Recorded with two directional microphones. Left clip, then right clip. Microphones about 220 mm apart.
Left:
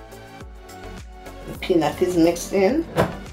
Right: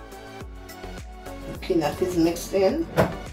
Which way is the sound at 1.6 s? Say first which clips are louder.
Left 4 dB; 45° left (ahead or behind).